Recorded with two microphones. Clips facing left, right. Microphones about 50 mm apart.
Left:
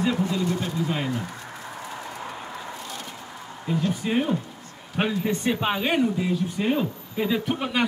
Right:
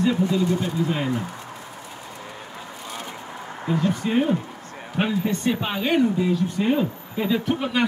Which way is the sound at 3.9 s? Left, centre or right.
Centre.